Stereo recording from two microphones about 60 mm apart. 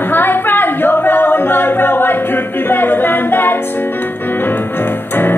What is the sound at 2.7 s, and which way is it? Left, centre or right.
A capella, left.